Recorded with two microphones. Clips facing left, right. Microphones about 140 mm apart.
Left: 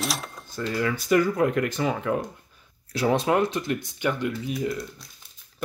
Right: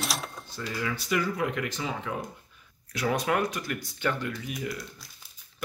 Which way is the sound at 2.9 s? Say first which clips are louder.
Left 5 dB; 30° left (ahead or behind).